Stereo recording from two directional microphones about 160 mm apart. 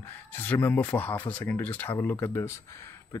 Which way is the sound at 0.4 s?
10° left (ahead or behind).